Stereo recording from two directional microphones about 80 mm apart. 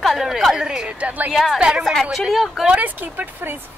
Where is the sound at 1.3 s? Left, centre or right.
Centre.